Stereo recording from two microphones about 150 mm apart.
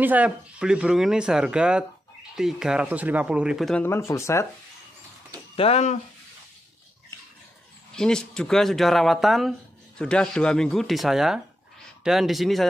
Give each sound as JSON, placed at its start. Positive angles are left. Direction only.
{"t": 0.0, "sound": "speech", "side_deg": -10}
{"t": 3.8, "sound": "speech", "side_deg": 20}
{"t": 5.6, "sound": "speech", "side_deg": 45}
{"t": 7.9, "sound": "speech", "side_deg": 5}